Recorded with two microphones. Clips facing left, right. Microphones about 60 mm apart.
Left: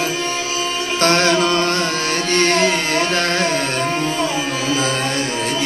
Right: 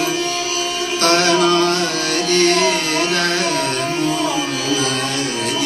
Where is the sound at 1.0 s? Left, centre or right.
Left.